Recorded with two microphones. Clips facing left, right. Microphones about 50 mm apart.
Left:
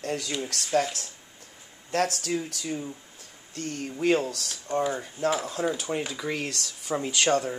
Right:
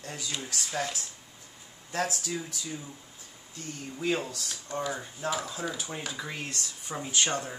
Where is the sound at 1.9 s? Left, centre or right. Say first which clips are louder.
Left 5 dB; left.